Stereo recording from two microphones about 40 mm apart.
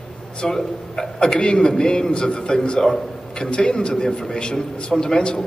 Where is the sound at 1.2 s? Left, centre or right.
Left.